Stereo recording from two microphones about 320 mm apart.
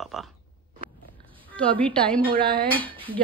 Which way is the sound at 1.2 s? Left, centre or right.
Centre.